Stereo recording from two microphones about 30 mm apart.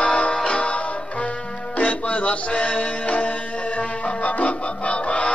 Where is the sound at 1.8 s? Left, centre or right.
Left.